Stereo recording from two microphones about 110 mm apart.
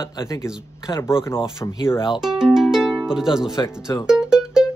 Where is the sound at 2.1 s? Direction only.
5° right (ahead or behind).